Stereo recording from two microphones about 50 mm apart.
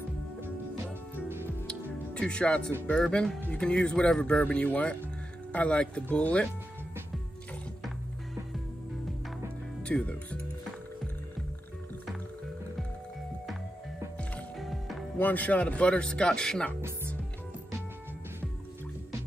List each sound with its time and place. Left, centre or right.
1.7 s music: centre
2.9 s speech: centre
9.9 s speech: left
14.6 s music: centre
15.1 s speech: left; by 16.7 s centre